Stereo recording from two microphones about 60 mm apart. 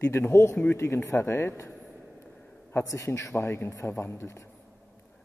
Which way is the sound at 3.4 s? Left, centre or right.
Left.